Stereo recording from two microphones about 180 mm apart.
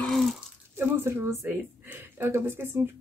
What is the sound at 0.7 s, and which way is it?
Speech, 15° right (ahead or behind).